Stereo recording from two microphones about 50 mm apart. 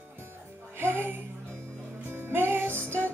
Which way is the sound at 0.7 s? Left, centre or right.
Right.